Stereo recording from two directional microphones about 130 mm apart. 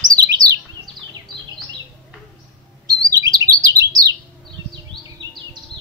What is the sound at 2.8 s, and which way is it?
Bird, 30° right (ahead or behind).